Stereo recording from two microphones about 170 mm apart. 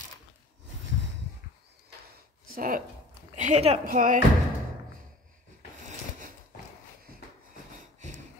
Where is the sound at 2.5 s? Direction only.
55° right (ahead or behind).